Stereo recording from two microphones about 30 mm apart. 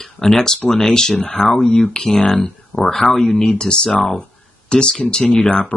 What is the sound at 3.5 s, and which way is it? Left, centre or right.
Speech, left.